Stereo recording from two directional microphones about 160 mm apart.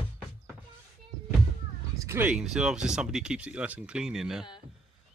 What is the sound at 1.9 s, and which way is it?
Speech, 15° right (ahead or behind).